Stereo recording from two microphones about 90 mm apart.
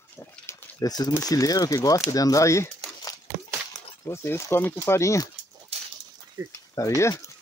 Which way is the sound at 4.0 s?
30° left (ahead or behind).